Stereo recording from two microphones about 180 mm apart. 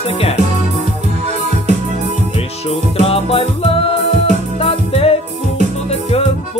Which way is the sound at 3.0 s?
30° left (ahead or behind).